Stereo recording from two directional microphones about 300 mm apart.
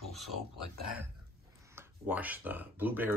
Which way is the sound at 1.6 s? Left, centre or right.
Centre.